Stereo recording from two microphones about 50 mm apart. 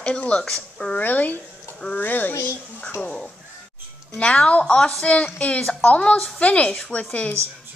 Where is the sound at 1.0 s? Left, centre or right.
Left.